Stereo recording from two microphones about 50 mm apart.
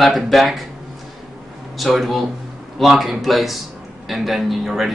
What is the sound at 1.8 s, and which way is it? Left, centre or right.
Speech, centre.